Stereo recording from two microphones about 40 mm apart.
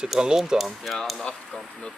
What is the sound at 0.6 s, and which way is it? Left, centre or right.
Speech, centre.